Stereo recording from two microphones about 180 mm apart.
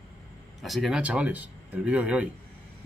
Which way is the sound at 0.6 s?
Centre (ahead or behind).